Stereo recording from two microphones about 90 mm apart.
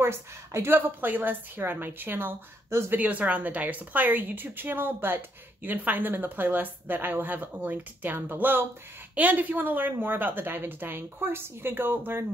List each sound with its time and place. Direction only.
0.0 s a woman's voice: 30° right (ahead or behind)